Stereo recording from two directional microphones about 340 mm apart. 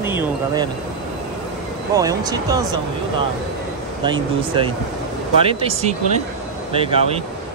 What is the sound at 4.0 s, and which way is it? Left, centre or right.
A man's voice, centre.